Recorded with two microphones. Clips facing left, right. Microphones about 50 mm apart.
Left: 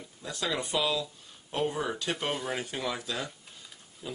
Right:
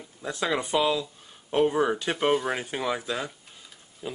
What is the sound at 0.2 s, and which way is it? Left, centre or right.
Speech, right.